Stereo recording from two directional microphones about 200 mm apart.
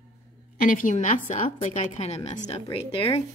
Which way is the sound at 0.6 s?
45° left (ahead or behind).